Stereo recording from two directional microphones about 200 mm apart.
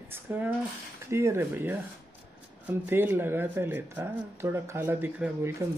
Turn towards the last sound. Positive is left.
turn(degrees=-15)  # may be behind; listen again after turning